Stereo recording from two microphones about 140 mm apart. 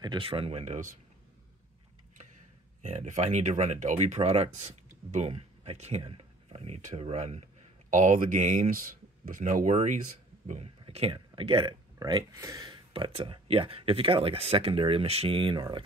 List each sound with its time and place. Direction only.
0.0 s speech: 35° right (ahead or behind)
2.8 s speech: 55° right (ahead or behind)
7.9 s speech: 65° right (ahead or behind); by 15.8 s 35° right (ahead or behind)